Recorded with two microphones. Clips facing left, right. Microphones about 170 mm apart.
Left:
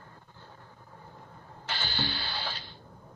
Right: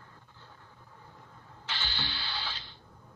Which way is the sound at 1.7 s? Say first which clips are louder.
Left 5 dB; 45° left (ahead or behind).